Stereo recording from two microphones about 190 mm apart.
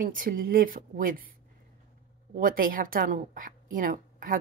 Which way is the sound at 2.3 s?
50° right (ahead or behind).